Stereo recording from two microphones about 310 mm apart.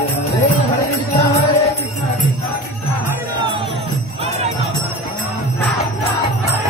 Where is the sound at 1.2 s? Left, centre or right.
Centre.